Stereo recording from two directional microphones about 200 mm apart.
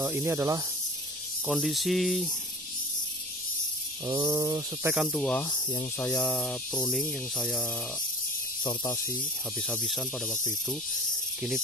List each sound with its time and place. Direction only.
0.0 s speech: 10° right (ahead or behind)
1.5 s speech: centre (ahead or behind)
4.0 s speech: 15° right (ahead or behind)
4.9 s speech: centre (ahead or behind)
5.4 s speech: 20° left (ahead or behind)
5.9 s speech: 5° left (ahead or behind)
8.6 s speech: 20° left (ahead or behind)
9.6 s speech: centre (ahead or behind)